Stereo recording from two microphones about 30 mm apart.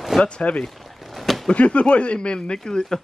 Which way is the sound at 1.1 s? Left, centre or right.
Centre.